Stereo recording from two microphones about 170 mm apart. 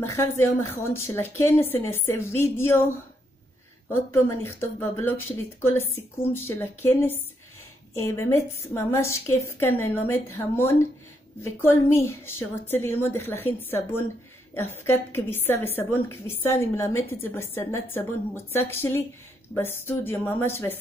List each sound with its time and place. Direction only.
0.0 s speech: 15° left (ahead or behind)
4.1 s speech: 15° left (ahead or behind)